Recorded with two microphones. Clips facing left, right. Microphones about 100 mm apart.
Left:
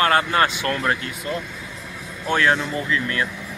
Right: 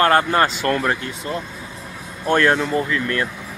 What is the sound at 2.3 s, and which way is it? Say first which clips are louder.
Speech: right 3 dB; 45° right (ahead or behind).